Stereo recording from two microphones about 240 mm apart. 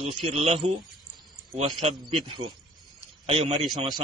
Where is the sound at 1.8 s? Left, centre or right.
Right.